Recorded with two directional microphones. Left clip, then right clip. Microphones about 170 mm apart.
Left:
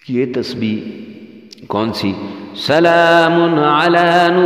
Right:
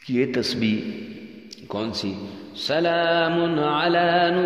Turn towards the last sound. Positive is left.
turn(degrees=45)  # may be behind; listen again after turning